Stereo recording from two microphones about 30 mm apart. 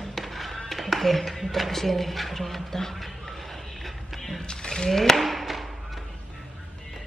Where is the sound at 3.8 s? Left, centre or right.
Centre.